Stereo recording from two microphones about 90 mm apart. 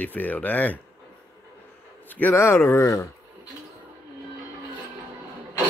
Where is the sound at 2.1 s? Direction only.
20° left (ahead or behind).